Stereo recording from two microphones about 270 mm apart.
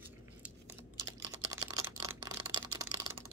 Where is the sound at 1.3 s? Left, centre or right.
Centre.